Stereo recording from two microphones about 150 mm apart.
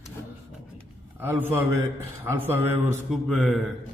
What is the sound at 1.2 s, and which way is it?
A man's voice, 15° right (ahead or behind).